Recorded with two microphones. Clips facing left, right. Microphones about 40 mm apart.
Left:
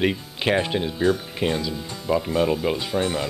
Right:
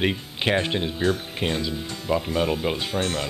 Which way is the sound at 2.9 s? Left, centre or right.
Centre.